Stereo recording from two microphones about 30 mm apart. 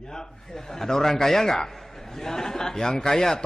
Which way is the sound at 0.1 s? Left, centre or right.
Centre.